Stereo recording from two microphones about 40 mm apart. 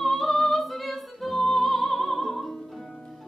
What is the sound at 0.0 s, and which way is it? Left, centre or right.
Music, centre.